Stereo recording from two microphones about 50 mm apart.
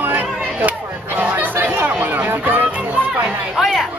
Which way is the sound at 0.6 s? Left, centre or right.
Right.